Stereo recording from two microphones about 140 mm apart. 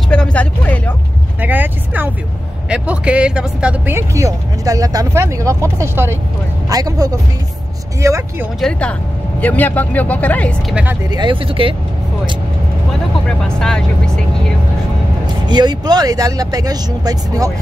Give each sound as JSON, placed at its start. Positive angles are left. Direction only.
{"t": 0.1, "sound": "a sound", "side_deg": 10}
{"t": 1.4, "sound": "vehicle", "side_deg": -15}
{"t": 2.7, "sound": "speech", "side_deg": -10}
{"t": 8.5, "sound": "speech", "side_deg": 5}
{"t": 10.7, "sound": "speech", "side_deg": -10}
{"t": 11.1, "sound": "speech", "side_deg": -35}
{"t": 13.4, "sound": "speech", "side_deg": 5}
{"t": 15.4, "sound": "speech", "side_deg": -30}